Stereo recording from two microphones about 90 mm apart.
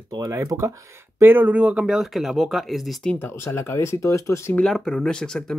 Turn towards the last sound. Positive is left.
turn(degrees=5)  # may be behind; listen again after turning